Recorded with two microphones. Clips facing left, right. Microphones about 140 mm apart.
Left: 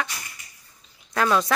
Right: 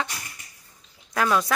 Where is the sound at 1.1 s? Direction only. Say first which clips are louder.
Left 1 dB; 5° right (ahead or behind).